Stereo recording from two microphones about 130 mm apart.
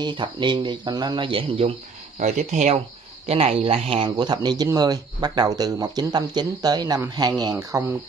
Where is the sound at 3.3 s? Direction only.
50° right (ahead or behind).